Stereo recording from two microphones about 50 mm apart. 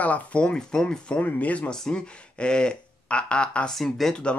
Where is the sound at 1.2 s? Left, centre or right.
Left.